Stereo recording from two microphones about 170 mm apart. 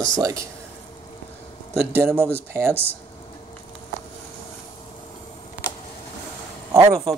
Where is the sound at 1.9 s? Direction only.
15° right (ahead or behind).